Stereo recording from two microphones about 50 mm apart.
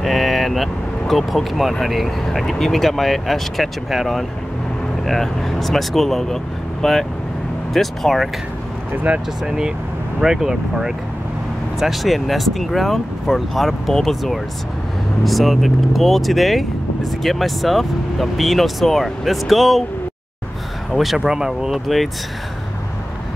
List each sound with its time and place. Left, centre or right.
0.0 s speech: centre
8.9 s speech: right
9.4 s speech: centre
20.9 s speech: centre
21.8 s speech: centre